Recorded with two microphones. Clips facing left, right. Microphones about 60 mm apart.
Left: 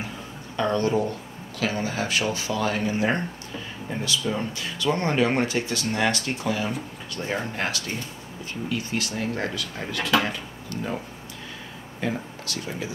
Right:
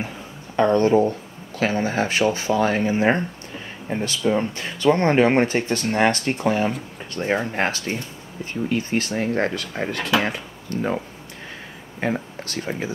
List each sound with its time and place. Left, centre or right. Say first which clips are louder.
0.6 s speech: right 7 dB; right
12.0 s speech: right 4 dB; right